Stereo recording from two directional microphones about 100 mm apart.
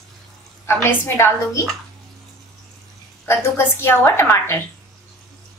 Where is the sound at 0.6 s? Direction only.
25° left (ahead or behind).